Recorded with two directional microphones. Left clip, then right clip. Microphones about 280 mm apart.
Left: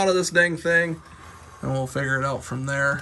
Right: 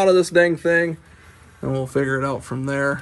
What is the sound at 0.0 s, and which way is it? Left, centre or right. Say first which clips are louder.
A man's voice: right 4 dB; centre.